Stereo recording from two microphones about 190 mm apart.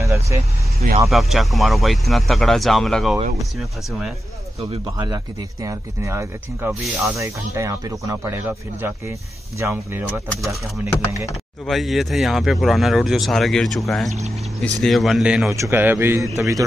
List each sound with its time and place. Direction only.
0.0 s vehicle: 15° right (ahead or behind)
1.1 s speech: centre (ahead or behind)
4.6 s speech: 25° right (ahead or behind); by 7.2 s centre (ahead or behind)
7.2 s speech: 15° right (ahead or behind)
11.6 s speech: centre (ahead or behind)
15.5 s speech: 15° right (ahead or behind)